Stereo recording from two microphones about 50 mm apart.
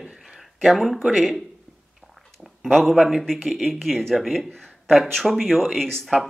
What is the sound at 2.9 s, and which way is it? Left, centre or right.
Speech, centre.